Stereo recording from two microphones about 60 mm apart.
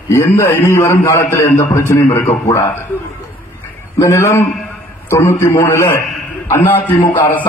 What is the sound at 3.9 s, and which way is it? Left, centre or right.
A man's voice, left.